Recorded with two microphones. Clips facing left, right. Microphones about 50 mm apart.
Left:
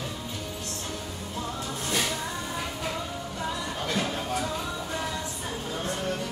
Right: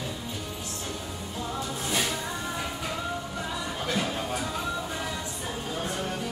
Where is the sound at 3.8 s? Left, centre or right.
Centre.